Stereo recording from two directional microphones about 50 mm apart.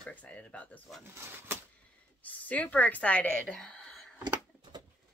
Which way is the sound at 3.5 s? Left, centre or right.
Centre.